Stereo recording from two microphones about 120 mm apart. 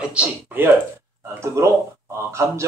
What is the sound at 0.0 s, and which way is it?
Speech, 10° right (ahead or behind).